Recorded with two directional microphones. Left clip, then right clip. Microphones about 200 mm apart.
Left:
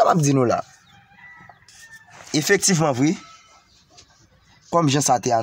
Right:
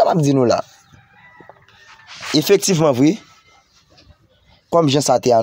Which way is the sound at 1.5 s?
20° right (ahead or behind).